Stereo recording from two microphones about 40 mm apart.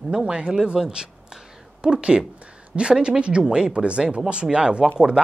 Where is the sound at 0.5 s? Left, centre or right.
Centre.